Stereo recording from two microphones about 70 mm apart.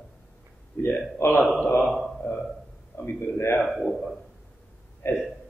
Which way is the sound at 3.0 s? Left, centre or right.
Left.